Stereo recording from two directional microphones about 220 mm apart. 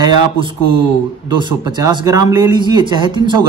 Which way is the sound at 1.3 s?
20° right (ahead or behind).